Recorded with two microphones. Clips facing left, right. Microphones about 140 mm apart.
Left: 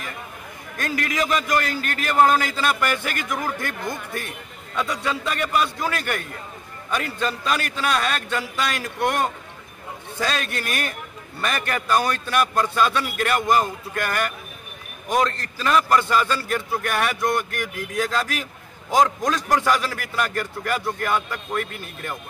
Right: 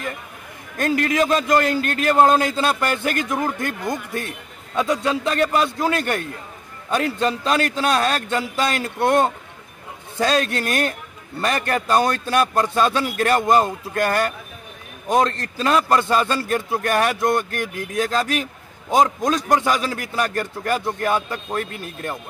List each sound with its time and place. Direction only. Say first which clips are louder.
0.9 s a man's voice: right 4 dB; 25° right (ahead or behind)
10.2 s a man's voice: right 6 dB; 35° right (ahead or behind)
18.9 s a man's voice: right 2 dB; 20° right (ahead or behind)
20.2 s a man's voice: right 1 dB; 30° right (ahead or behind)